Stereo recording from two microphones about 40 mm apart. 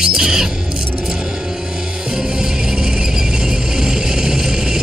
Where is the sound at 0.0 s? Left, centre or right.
Centre.